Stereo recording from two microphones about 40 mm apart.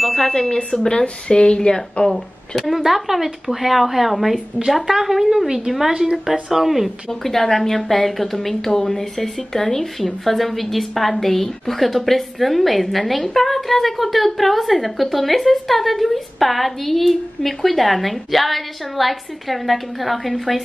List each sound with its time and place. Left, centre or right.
0.0 s bicycle bell: centre
0.3 s a woman's voice: centre
2.0 s speech: centre
2.8 s a woman's voice: centre
7.1 s a woman's voice: centre